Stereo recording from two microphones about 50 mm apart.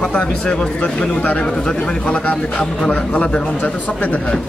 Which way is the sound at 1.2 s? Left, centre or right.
Left.